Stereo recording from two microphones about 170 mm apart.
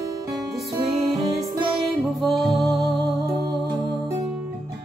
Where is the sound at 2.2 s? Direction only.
Centre (ahead or behind).